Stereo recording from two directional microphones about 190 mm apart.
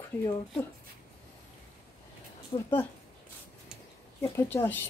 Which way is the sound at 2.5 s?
30° left (ahead or behind).